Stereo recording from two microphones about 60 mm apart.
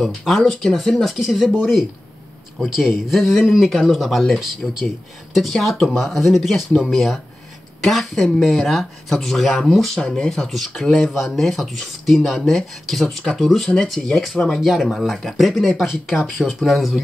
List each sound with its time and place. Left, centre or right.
0.4 s speech: centre
14.3 s speech: centre
14.6 s speech: centre